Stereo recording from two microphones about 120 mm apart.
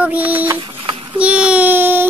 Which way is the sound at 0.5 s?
40° right (ahead or behind).